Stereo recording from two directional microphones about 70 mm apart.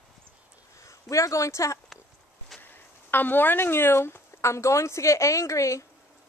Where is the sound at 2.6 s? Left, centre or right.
Left.